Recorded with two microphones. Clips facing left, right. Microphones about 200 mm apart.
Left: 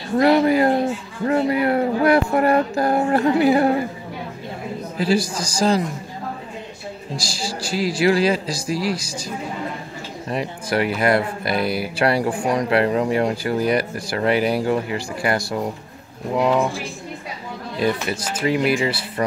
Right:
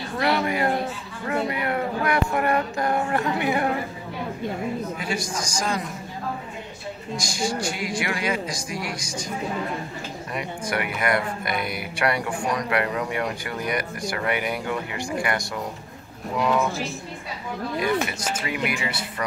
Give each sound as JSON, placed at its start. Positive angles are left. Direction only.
{"t": 0.2, "sound": "speech", "side_deg": 30}
{"t": 1.2, "sound": "a sound", "side_deg": 30}
{"t": 4.9, "sound": "speech", "side_deg": 30}
{"t": 7.2, "sound": "speech", "side_deg": 30}
{"t": 10.3, "sound": "speech", "side_deg": 30}
{"t": 17.7, "sound": "speech", "side_deg": 30}